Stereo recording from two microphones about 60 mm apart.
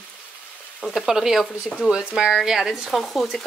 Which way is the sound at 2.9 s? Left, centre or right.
Centre.